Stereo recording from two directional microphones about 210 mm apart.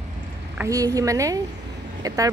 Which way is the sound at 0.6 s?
15° right (ahead or behind).